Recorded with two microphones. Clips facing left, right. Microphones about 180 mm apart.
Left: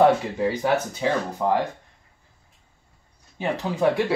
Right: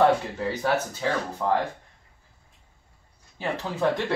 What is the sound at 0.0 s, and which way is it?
Speech, 15° left (ahead or behind).